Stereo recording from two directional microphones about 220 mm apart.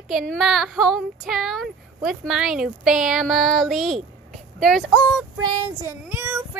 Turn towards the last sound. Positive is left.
turn(degrees=-10)  # may be behind; listen again after turning